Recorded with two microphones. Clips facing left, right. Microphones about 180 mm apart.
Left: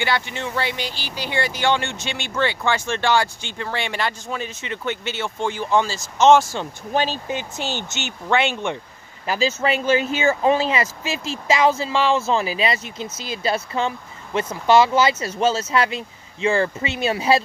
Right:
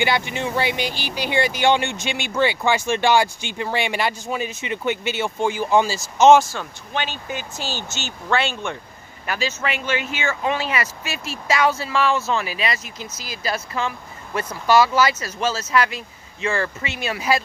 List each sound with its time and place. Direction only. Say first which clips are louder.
0.0 s speech: right 2 dB; 15° right (ahead or behind)
6.9 s speech: left 5 dB; 35° left (ahead or behind)